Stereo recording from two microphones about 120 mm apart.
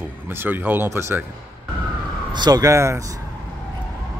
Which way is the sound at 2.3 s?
35° right (ahead or behind).